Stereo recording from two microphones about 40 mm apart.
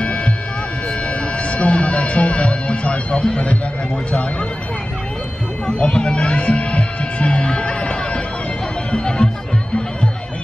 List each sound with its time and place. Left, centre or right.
0.0 s music: left
1.5 s speech: left
5.7 s music: left
8.9 s speech: centre